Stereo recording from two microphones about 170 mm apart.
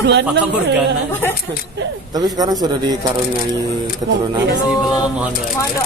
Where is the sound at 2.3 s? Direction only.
20° right (ahead or behind).